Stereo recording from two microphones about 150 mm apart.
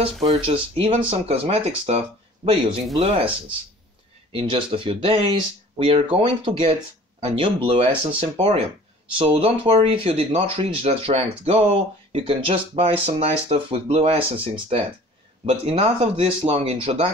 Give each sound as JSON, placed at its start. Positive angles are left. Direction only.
{"t": 0.0, "sound": "speech", "side_deg": -40}